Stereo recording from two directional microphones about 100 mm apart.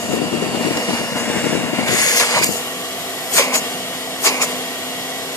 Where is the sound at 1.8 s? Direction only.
40° left (ahead or behind).